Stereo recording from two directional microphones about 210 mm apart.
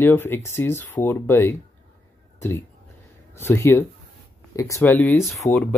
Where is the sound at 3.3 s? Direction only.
10° left (ahead or behind).